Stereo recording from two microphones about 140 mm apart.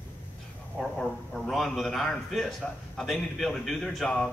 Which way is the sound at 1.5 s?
Centre (ahead or behind).